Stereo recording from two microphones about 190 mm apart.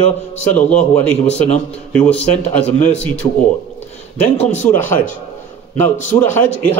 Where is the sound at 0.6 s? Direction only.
5° left (ahead or behind).